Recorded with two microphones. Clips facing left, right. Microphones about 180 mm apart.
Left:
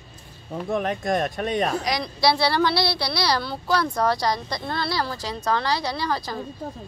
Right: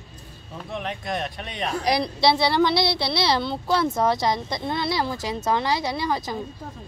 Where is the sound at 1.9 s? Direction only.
30° right (ahead or behind).